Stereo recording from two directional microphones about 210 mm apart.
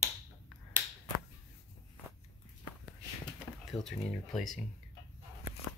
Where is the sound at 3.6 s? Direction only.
Centre (ahead or behind).